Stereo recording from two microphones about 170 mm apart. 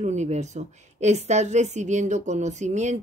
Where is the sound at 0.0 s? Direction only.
40° right (ahead or behind).